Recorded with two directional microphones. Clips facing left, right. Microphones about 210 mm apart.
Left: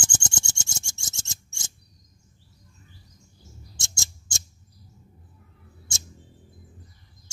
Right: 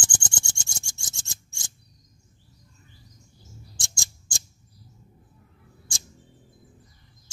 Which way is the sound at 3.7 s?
25° left (ahead or behind).